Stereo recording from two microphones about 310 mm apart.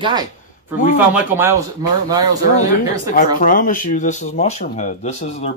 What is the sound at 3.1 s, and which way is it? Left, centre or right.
Speech, left.